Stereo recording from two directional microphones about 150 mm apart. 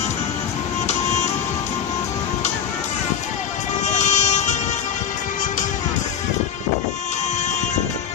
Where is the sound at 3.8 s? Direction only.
50° left (ahead or behind).